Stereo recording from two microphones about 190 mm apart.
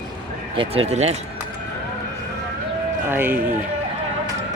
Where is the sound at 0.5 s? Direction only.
30° right (ahead or behind).